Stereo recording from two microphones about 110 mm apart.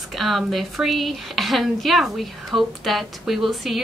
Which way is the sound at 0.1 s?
Centre (ahead or behind).